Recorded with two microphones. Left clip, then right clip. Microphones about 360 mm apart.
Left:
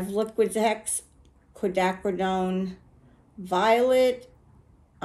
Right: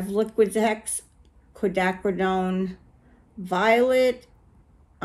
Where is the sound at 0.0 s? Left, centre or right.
Centre.